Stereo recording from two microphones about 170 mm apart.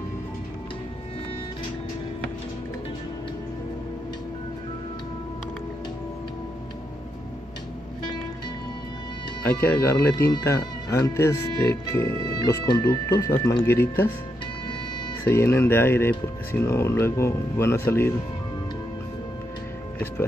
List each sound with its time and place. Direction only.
9.4 s speech: 10° left (ahead or behind)
15.2 s speech: 15° left (ahead or behind)